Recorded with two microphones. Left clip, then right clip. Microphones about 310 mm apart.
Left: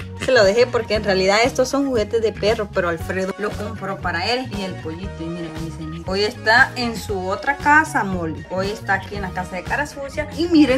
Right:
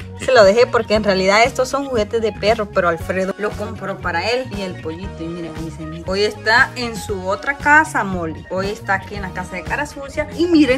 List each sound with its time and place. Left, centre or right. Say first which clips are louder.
0.2 s speech: right 4 dB; centre